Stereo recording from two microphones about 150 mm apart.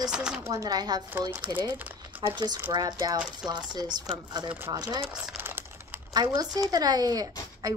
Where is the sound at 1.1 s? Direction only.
15° right (ahead or behind).